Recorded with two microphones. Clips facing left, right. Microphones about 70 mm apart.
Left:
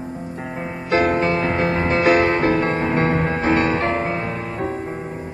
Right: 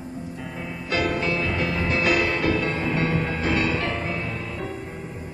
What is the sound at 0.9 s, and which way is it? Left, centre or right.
Music, left.